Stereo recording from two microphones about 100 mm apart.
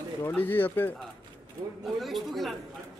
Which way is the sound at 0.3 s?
20° left (ahead or behind).